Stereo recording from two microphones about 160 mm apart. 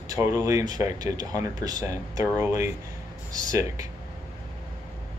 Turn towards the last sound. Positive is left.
turn(degrees=-20)  # may be behind; listen again after turning